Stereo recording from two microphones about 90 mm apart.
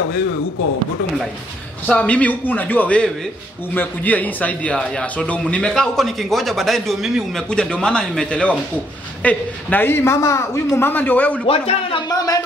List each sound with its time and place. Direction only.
1.9 s a man's voice: 15° left (ahead or behind); by 7.4 s centre (ahead or behind)
7.4 s a man's voice: 10° left (ahead or behind)
11.4 s a man's voice: 90° left
12.1 s speech: 45° left (ahead or behind)